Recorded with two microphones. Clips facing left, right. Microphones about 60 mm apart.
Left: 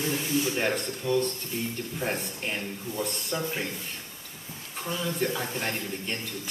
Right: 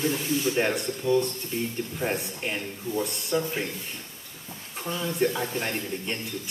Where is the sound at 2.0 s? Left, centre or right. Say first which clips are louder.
Right 2 dB; centre.